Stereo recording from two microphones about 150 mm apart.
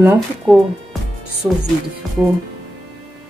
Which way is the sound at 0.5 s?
Centre (ahead or behind).